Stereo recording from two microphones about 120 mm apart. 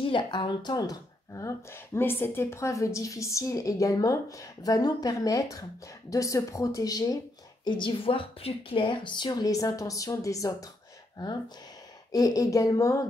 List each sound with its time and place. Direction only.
0.0 s speech: 45° left (ahead or behind)
7.6 s a woman's voice: 40° left (ahead or behind)